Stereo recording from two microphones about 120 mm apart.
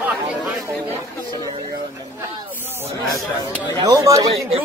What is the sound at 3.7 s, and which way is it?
Speech, 35° right (ahead or behind).